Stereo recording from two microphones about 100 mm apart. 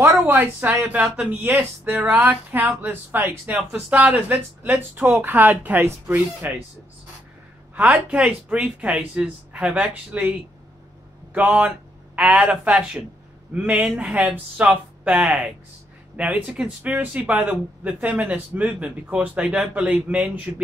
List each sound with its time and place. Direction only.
0.3 s speech: 20° right (ahead or behind)
1.0 s speech: 5° right (ahead or behind)
1.4 s speech: 20° right (ahead or behind)
7.7 s speech: 10° right (ahead or behind)
11.3 s speech: 15° right (ahead or behind)